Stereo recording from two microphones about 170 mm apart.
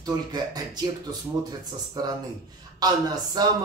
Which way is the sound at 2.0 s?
20° right (ahead or behind).